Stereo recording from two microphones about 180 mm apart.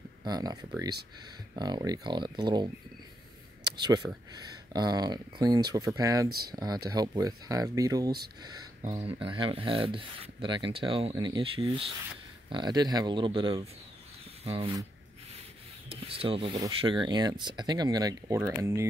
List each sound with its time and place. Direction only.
0.2 s speech: 20° right (ahead or behind)
3.8 s speech: 20° right (ahead or behind)
15.9 s speech: 30° right (ahead or behind); by 18.9 s 15° right (ahead or behind)